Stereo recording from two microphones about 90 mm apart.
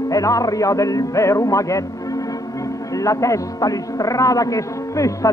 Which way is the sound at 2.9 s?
35° left (ahead or behind).